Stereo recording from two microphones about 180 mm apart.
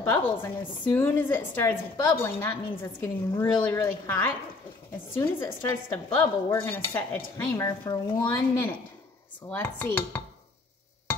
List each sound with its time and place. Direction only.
0.0 s a woman's voice: 15° left (ahead or behind)